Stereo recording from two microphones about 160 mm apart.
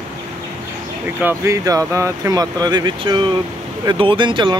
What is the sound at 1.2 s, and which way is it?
Speech, 15° right (ahead or behind).